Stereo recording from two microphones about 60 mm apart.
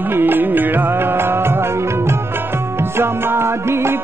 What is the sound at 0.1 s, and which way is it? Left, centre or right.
Music, right.